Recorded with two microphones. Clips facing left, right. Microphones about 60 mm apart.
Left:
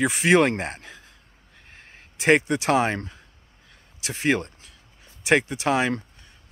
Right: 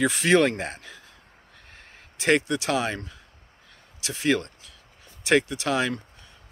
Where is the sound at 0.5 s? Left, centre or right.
Left.